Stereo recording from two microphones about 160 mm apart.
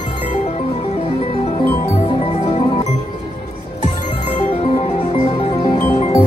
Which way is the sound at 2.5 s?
35° left (ahead or behind).